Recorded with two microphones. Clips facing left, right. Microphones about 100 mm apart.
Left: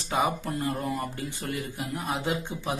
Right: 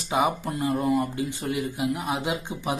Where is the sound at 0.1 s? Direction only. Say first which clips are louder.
Right 3 dB; 15° right (ahead or behind).